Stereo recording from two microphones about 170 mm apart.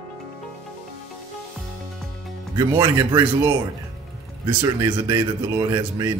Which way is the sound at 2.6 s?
20° right (ahead or behind).